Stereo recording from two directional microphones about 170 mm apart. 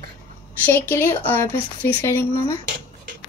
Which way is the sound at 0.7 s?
10° left (ahead or behind).